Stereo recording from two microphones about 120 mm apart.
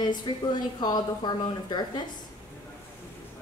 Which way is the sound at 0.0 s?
35° left (ahead or behind).